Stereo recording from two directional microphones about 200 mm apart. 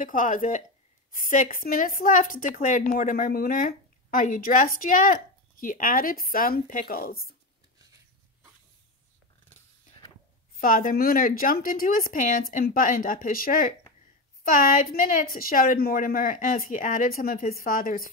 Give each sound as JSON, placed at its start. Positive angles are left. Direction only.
{"t": 0.0, "sound": "a woman's voice", "side_deg": 40}
{"t": 10.6, "sound": "a woman's voice", "side_deg": 45}